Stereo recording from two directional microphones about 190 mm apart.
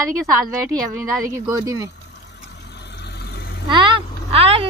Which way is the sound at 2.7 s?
65° left (ahead or behind).